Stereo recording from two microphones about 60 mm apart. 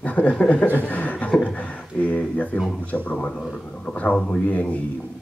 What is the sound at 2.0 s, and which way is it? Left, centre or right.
Speech, left.